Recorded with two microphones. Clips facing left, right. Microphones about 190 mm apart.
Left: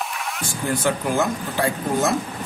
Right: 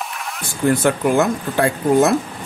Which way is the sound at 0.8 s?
60° right (ahead or behind).